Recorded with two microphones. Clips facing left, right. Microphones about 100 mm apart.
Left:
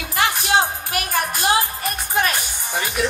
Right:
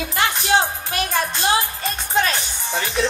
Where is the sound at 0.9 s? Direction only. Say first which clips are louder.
Right 1 dB; 25° right (ahead or behind).